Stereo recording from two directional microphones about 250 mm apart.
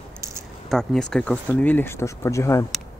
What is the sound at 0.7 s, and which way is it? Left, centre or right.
Speech, centre.